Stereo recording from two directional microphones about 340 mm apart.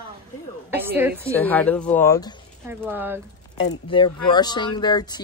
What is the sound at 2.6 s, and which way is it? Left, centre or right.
Speech, centre.